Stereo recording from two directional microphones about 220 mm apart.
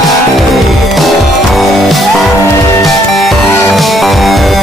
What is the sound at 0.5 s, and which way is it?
Music, centre (ahead or behind).